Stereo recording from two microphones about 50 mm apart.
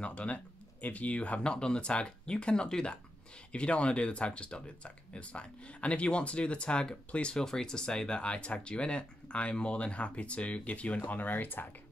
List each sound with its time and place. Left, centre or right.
0.0 s speech: left